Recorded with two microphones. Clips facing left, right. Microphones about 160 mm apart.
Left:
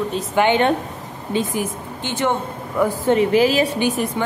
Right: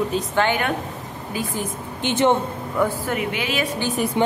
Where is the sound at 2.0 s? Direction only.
20° right (ahead or behind).